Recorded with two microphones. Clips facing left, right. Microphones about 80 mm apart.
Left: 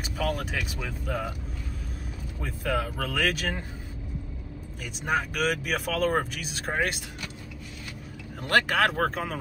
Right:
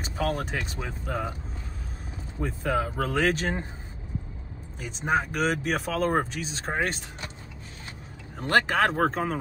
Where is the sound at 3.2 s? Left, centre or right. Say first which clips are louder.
Right 3 dB; right.